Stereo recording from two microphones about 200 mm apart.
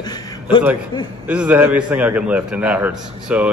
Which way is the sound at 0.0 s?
20° left (ahead or behind).